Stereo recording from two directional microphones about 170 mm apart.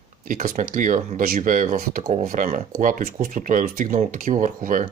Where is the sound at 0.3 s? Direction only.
50° right (ahead or behind).